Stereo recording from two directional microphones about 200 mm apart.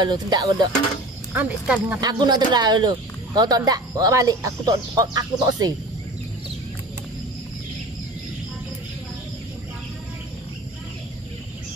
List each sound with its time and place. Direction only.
0.0 s speech: 20° right (ahead or behind)
1.3 s speech: 5° right (ahead or behind)
2.0 s speech: 20° right (ahead or behind)